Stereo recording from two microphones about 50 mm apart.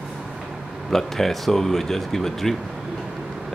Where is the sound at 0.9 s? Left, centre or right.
Centre.